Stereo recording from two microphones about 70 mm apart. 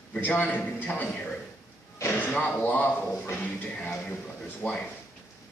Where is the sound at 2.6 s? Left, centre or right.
Left.